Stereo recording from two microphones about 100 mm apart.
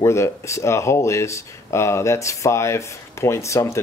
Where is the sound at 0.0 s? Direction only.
30° left (ahead or behind).